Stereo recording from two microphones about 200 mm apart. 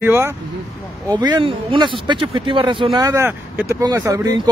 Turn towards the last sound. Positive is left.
turn(degrees=-15)  # may be behind; listen again after turning